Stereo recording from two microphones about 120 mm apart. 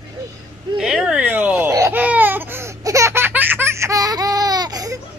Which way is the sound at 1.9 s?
15° right (ahead or behind).